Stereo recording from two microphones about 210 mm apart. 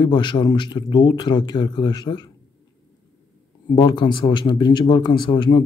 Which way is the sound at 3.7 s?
20° left (ahead or behind).